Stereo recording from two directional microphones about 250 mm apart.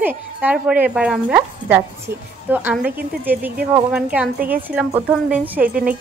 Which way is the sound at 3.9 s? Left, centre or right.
Centre.